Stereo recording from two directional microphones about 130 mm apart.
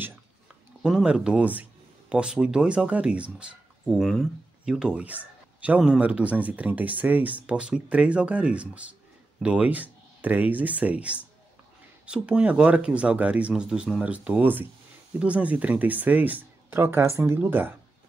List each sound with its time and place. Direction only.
0.8 s speech: 5° right (ahead or behind)